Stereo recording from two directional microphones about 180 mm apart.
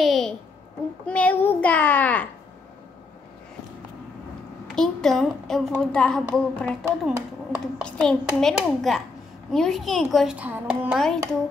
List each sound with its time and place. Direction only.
0.0 s a sound: centre (ahead or behind)
1.0 s a child's voice: 5° left (ahead or behind)
4.7 s a child's voice: 5° left (ahead or behind)